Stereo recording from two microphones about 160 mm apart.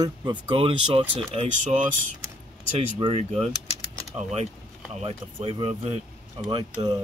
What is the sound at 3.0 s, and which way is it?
Speech, 35° right (ahead or behind).